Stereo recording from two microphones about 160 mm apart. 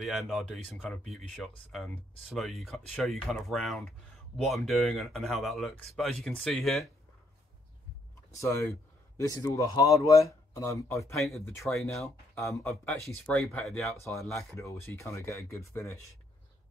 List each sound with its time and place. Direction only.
0.0 s speech: centre (ahead or behind)
8.3 s speech: 20° left (ahead or behind)
11.1 s speech: centre (ahead or behind); by 12.9 s 15° left (ahead or behind)
13.0 s speech: centre (ahead or behind)
13.9 s speech: 20° left (ahead or behind)